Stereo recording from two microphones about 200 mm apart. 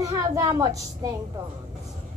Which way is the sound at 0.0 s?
15° right (ahead or behind).